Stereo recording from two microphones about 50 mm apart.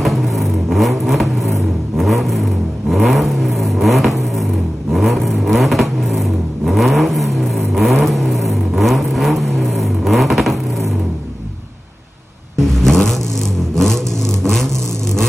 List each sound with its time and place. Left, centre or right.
0.0 s vehicle: centre
12.5 s vehicle: centre